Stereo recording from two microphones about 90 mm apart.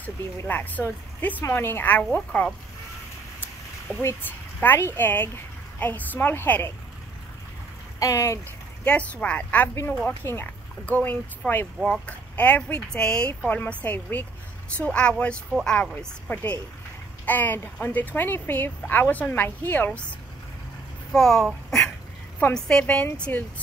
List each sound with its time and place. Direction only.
0.0 s speech: 20° left (ahead or behind)
3.9 s speech: 25° left (ahead or behind)
8.0 s speech: 35° left (ahead or behind)
8.8 s speech: 15° left (ahead or behind)
10.0 s speech: 25° left (ahead or behind)
21.1 s a child's voice: 5° left (ahead or behind)
21.6 s a sound: 5° left (ahead or behind)
22.5 s speech: 10° left (ahead or behind)